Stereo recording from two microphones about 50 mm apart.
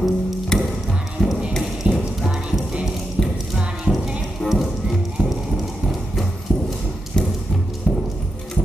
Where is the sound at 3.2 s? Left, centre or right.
Centre.